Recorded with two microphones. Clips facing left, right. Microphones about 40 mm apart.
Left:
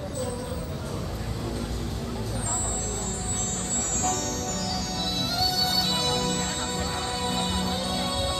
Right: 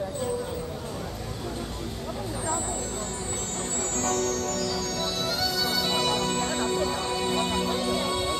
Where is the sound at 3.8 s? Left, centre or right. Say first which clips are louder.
Right 2 dB; right.